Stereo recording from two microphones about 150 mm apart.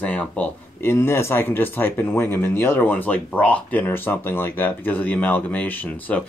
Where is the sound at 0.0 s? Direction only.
10° left (ahead or behind).